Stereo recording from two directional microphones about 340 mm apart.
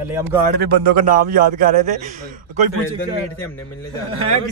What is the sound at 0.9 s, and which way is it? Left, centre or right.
A man's voice, right.